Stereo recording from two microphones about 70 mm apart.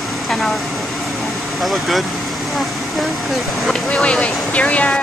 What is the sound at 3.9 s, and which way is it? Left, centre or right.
Speech, centre.